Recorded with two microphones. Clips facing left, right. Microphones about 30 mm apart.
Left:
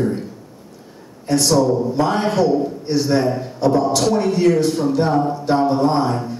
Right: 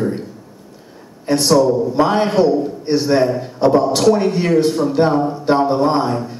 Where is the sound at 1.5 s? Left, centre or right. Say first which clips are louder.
Right 3 dB; centre.